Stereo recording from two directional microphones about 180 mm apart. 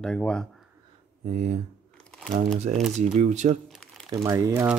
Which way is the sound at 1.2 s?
40° right (ahead or behind).